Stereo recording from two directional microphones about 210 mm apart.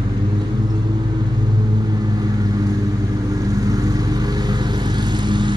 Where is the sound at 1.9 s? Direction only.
20° right (ahead or behind).